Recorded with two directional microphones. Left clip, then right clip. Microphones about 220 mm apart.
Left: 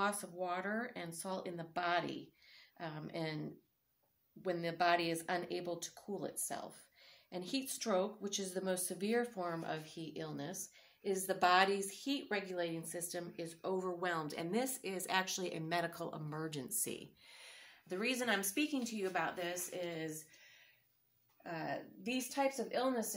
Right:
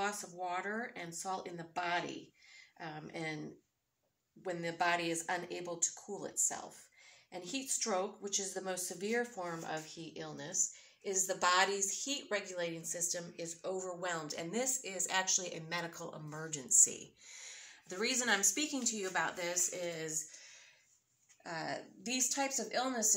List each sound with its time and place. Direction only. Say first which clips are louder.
0.0 s speech: even; 55° left (ahead or behind)
4.4 s speech: even; 55° left (ahead or behind); by 20.2 s 5° left (ahead or behind)
21.5 s speech: right 1 dB; 15° left (ahead or behind)